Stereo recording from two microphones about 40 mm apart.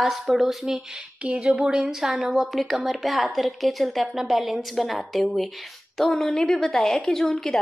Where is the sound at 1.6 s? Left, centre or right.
Right.